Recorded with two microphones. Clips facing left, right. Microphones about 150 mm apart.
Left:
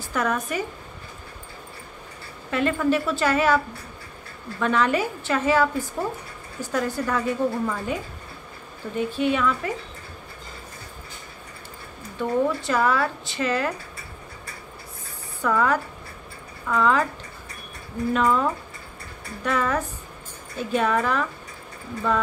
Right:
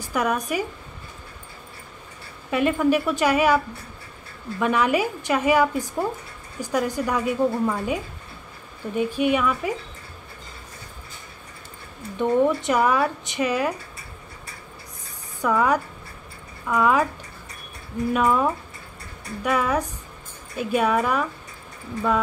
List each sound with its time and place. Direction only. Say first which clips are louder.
0.0 s speech: right 1 dB; 10° right (ahead or behind)
2.5 s speech: right 2 dB; 15° right (ahead or behind)
12.2 s speech: right 3 dB; 20° right (ahead or behind)
15.4 s speech: right 1 dB; 15° right (ahead or behind)
18.1 s speech: right 1 dB; 10° right (ahead or behind)